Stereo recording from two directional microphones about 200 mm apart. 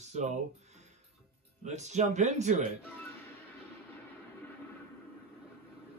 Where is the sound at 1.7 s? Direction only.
35° right (ahead or behind).